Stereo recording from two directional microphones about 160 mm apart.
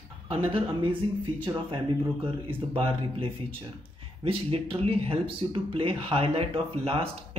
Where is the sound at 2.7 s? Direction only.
35° right (ahead or behind).